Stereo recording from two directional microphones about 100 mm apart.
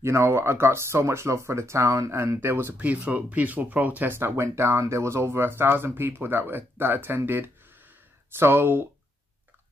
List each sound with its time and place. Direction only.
0.0 s speech: 25° right (ahead or behind)